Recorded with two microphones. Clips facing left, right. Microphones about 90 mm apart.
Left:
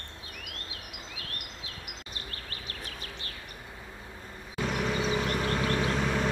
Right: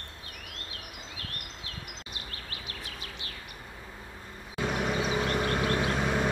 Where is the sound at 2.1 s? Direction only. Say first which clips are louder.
Left 1 dB; 40° left (ahead or behind).